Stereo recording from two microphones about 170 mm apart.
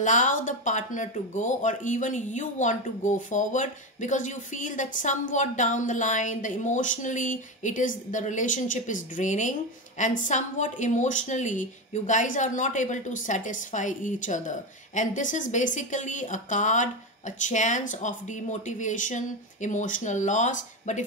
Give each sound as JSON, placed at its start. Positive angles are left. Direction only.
{"t": 0.0, "sound": "speech", "side_deg": 45}